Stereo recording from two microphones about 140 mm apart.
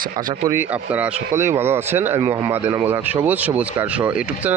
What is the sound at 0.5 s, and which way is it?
Speech, 10° right (ahead or behind).